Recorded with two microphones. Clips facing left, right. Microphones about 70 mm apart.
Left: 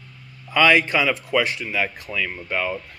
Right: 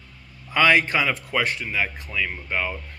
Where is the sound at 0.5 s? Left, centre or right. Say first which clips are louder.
Left 2 dB; right.